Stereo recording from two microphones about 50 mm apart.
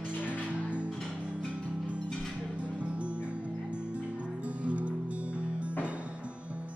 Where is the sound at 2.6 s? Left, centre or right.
Right.